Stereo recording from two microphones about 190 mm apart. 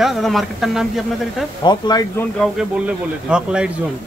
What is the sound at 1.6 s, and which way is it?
Speech, 20° left (ahead or behind).